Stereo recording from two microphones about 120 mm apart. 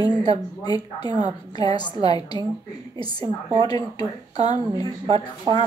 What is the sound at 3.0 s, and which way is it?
Speech, 45° right (ahead or behind).